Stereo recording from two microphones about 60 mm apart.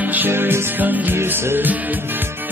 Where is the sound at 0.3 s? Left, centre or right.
Right.